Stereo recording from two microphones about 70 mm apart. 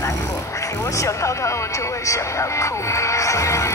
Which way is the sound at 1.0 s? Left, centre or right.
Left.